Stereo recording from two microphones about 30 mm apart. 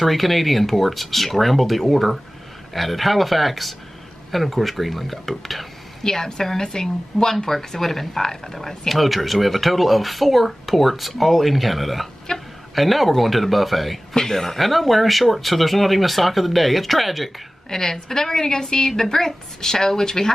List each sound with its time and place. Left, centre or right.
0.0 s speech: centre
6.0 s a woman's voice: centre
8.5 s speech: centre
12.3 s music: left
12.7 s speech: centre
14.1 s speech: centre
17.6 s a woman's voice: centre